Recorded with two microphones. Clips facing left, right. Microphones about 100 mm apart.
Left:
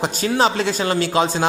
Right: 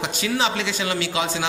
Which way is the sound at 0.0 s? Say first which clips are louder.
Left 5 dB; 40° left (ahead or behind).